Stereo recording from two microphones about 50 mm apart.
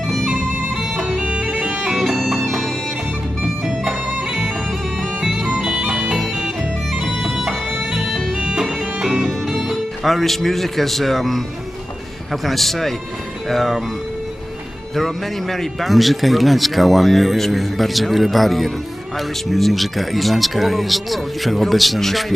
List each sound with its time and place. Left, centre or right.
0.0 s music: centre
0.7 s music: centre
1.2 s bagpipes: right
1.8 s music: centre
2.3 s music: centre
5.2 s bagpipes: centre
5.6 s bagpipes: centre
7.0 s bagpipes: centre
9.5 s music: centre
10.0 s a man's voice: centre
15.0 s a man's voice: centre